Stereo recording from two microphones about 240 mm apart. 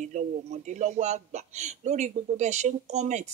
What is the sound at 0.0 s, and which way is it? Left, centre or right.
A man's voice, right.